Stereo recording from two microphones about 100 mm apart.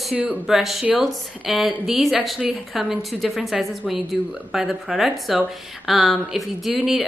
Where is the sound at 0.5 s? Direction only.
Centre (ahead or behind).